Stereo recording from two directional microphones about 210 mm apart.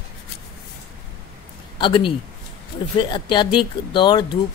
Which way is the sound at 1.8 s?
25° left (ahead or behind).